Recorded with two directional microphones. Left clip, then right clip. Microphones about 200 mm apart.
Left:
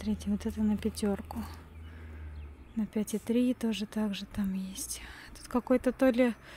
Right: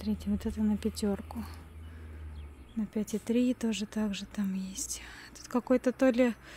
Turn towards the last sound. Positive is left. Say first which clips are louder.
# even
turn(degrees=0)  # may be behind; listen again after turning